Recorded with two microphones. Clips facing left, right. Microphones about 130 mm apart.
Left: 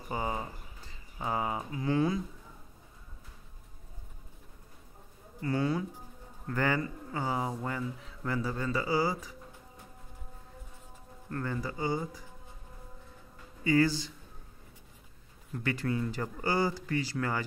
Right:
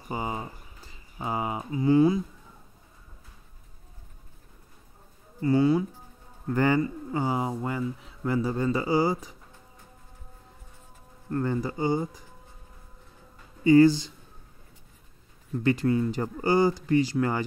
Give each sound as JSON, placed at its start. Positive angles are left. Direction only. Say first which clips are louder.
{"t": 0.1, "sound": "a sound", "louder": "right 2 dB", "side_deg": -10}
{"t": 1.1, "sound": "speech", "louder": "right 2 dB", "side_deg": -10}
{"t": 5.4, "sound": "speech", "louder": "right 8 dB", "side_deg": -15}
{"t": 11.2, "sound": "speech", "louder": "right 7 dB", "side_deg": -25}
{"t": 13.7, "sound": "speech", "louder": "right 9 dB", "side_deg": -20}
{"t": 15.6, "sound": "speech", "louder": "right 8 dB", "side_deg": -25}